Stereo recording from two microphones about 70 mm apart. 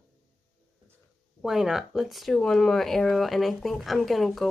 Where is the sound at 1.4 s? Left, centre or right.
Centre.